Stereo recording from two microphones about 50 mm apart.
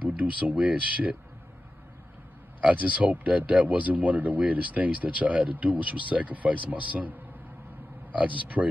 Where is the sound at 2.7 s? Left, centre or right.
Right.